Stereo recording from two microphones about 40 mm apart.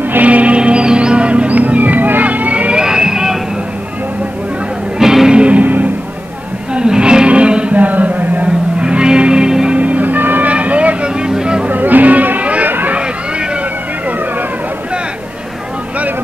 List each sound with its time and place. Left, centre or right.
0.2 s music: right
0.6 s music: right
2.7 s a sound: centre
4.9 s music: centre
5.3 s music: right
5.6 s music: right
6.7 s music: right
7.7 s music: right
8.7 s music: right
9.8 s music: right
10.5 s vehicle: right
11.7 s music: right
12.6 s a sound: right